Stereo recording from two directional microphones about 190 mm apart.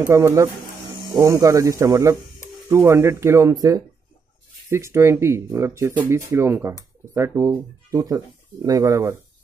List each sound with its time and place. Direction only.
0.1 s speech: 15° right (ahead or behind)